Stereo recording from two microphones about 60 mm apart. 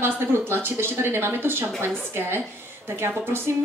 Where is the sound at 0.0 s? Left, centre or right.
Right.